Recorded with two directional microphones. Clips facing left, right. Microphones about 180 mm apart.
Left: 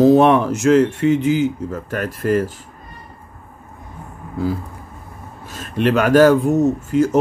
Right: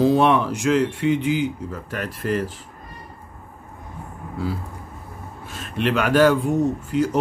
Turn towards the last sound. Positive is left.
turn(degrees=45)  # may be behind; listen again after turning